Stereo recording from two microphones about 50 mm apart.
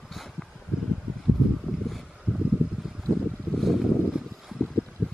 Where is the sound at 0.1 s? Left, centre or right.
Centre.